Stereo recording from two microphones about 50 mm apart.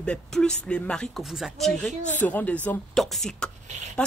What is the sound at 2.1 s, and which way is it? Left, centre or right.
Speech, left.